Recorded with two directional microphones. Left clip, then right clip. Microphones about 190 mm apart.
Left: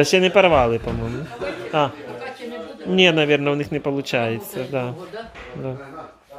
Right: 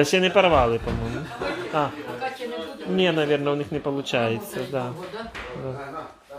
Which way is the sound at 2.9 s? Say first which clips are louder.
Left 6 dB; 35° left (ahead or behind).